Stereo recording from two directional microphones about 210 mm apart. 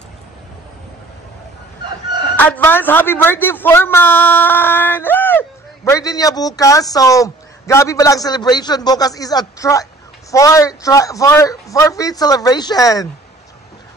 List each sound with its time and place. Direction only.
2.3 s a man's voice: 10° left (ahead or behind)